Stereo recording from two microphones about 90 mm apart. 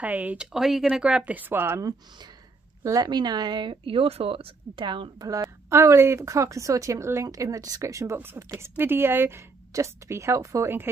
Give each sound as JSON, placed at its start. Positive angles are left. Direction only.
{"t": 0.0, "sound": "speech", "side_deg": -15}
{"t": 2.8, "sound": "speech", "side_deg": -40}
{"t": 3.1, "sound": "speech", "side_deg": -55}
{"t": 5.7, "sound": "a woman's voice", "side_deg": -30}